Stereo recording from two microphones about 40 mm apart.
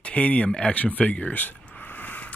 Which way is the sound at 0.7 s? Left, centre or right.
Left.